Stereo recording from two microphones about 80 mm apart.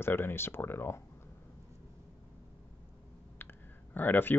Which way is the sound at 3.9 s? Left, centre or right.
Left.